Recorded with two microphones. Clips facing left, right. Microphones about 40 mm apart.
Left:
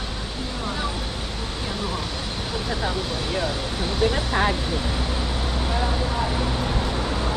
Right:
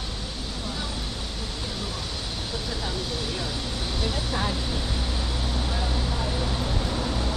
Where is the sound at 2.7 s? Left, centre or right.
Left.